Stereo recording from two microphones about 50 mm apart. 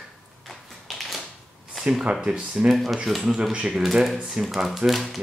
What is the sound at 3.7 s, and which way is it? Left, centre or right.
Speech, centre.